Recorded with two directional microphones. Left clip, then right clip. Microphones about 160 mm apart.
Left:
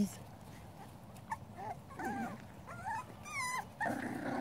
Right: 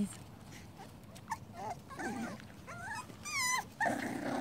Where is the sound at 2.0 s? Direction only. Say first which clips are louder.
Left 1 dB; 25° right (ahead or behind).